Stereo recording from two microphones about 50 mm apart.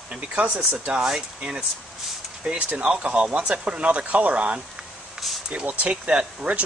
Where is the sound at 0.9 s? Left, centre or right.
Centre.